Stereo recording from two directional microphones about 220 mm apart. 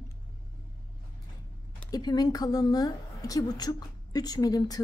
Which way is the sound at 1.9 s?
15° left (ahead or behind).